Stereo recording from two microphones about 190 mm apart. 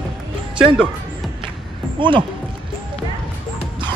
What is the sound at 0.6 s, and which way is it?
Music, 5° right (ahead or behind).